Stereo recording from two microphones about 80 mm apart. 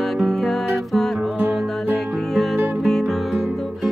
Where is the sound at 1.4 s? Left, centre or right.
Right.